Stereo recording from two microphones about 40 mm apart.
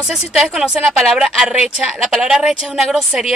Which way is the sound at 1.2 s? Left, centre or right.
Centre.